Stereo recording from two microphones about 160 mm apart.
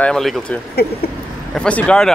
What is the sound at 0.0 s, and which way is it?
Speech, 5° left (ahead or behind).